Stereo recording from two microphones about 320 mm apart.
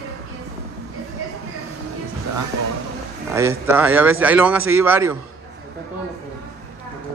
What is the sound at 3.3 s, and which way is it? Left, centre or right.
A man's voice, centre.